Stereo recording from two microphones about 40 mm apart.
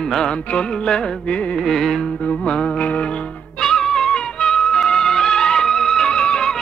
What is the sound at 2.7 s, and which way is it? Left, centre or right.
Music, left.